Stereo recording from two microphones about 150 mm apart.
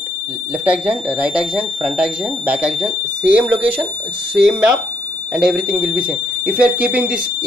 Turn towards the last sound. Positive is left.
turn(degrees=-10)  # may be behind; listen again after turning